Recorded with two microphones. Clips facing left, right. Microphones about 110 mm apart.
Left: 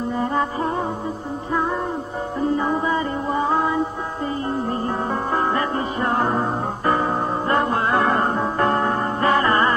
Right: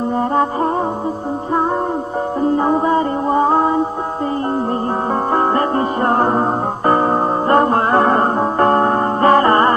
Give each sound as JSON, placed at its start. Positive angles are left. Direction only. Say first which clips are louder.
{"t": 2.5, "sound": "music", "louder": "right 7 dB", "side_deg": -45}
{"t": 5.3, "sound": "music", "louder": "right 6 dB", "side_deg": -45}